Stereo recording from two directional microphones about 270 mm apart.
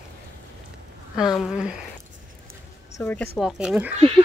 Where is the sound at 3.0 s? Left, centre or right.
Centre.